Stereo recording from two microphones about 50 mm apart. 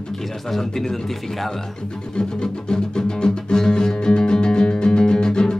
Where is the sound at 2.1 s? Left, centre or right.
Centre.